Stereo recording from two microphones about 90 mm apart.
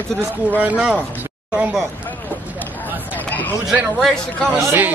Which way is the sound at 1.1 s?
20° right (ahead or behind).